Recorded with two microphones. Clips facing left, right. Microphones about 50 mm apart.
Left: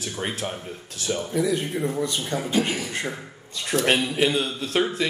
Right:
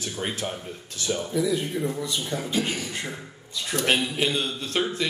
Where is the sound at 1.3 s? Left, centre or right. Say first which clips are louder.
Left 1 dB; left.